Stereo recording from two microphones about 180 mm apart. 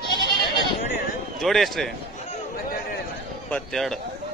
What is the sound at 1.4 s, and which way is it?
Speech, centre (ahead or behind).